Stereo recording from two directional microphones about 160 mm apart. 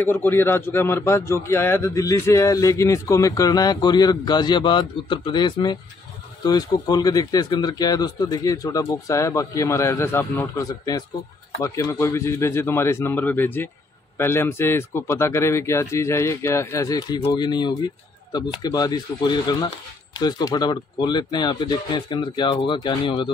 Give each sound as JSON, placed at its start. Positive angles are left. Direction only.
{"t": 0.0, "sound": "a man's voice", "side_deg": 10}